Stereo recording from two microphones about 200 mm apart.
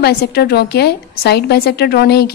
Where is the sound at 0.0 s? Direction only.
55° left (ahead or behind).